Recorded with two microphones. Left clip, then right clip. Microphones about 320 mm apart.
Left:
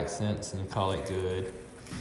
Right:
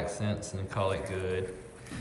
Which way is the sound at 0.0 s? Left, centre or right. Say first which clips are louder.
Left 1 dB; centre.